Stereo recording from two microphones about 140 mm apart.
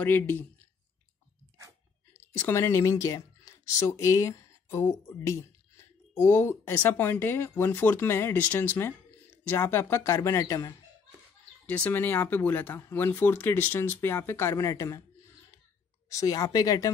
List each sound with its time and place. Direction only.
0.0 s speech: 15° left (ahead or behind)
2.1 s speech: 15° left (ahead or behind)
11.7 s speech: 10° left (ahead or behind)
16.1 s speech: 25° left (ahead or behind)